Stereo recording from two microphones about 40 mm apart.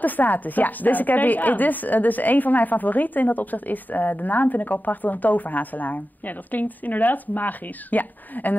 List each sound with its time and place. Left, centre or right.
0.0 s a woman's voice: left